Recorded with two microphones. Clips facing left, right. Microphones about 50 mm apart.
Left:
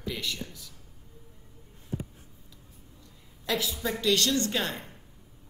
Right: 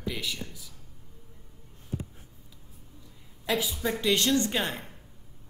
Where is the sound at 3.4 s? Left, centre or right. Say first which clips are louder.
Right 1 dB; centre.